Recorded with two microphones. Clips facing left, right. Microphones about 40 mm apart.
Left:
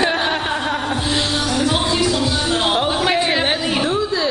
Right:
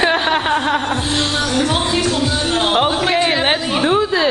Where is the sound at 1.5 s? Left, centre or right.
Right.